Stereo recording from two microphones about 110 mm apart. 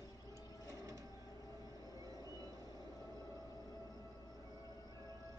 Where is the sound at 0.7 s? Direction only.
30° right (ahead or behind).